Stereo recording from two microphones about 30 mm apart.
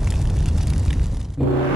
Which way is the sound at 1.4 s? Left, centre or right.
Centre.